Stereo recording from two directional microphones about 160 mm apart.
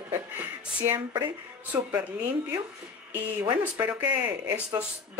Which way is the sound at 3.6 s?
10° right (ahead or behind).